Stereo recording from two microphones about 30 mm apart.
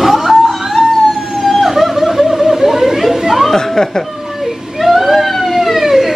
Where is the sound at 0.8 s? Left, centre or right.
Left.